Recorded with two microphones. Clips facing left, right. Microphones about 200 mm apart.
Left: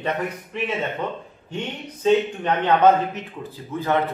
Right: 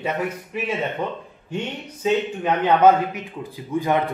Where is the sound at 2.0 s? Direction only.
10° right (ahead or behind).